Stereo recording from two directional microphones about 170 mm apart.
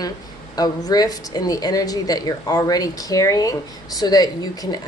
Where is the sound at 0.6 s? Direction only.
25° left (ahead or behind).